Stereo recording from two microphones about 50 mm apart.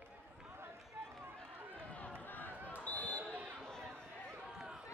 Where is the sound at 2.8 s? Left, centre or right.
Left.